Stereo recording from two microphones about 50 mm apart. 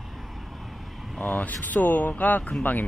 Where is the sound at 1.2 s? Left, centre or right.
Left.